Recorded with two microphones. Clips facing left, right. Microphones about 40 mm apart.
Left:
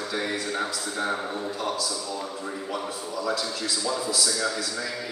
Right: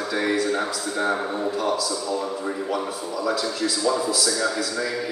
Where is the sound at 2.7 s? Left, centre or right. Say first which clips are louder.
Right 4 dB; centre.